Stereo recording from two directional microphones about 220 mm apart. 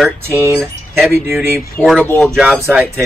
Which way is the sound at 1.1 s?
10° right (ahead or behind).